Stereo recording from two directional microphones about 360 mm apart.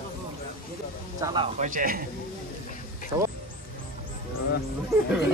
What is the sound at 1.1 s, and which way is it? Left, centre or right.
Speech, centre.